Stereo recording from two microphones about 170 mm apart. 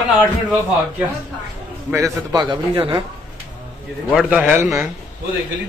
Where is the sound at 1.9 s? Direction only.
15° right (ahead or behind).